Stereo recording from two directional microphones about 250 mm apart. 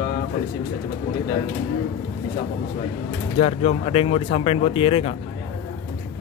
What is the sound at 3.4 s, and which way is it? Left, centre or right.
Speech, left.